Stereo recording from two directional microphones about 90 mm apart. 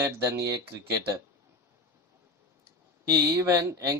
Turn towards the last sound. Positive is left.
turn(degrees=-35)  # may be behind; listen again after turning